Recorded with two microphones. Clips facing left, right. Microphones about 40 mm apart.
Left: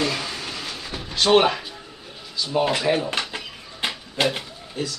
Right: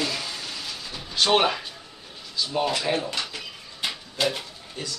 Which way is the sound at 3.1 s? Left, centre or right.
Left.